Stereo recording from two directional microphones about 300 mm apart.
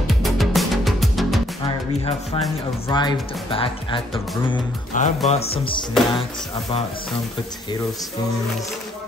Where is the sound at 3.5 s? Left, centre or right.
Centre.